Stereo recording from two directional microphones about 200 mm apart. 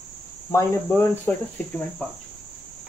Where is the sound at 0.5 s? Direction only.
10° left (ahead or behind).